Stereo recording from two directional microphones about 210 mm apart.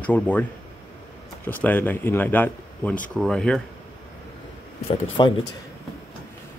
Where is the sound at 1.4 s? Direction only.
10° left (ahead or behind).